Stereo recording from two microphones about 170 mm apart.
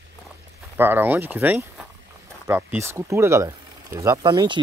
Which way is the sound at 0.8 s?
10° right (ahead or behind).